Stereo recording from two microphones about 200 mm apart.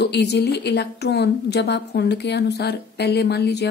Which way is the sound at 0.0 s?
55° left (ahead or behind).